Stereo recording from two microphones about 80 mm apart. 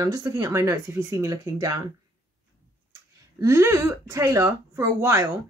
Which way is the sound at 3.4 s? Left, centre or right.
Right.